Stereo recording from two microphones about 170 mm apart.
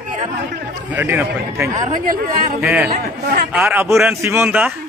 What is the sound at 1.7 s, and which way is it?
Speech, 50° right (ahead or behind).